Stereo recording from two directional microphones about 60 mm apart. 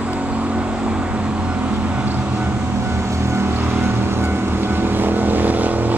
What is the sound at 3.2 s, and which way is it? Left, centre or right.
Vehicle, right.